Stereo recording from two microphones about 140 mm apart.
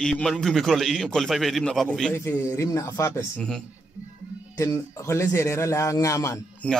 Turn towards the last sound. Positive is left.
turn(degrees=10)  # may be behind; listen again after turning